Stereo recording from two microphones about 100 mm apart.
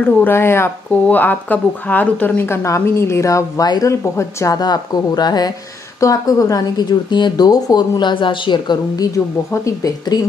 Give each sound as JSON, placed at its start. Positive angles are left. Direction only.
{"t": 0.0, "sound": "speech", "side_deg": 20}
{"t": 4.6, "sound": "speech", "side_deg": 45}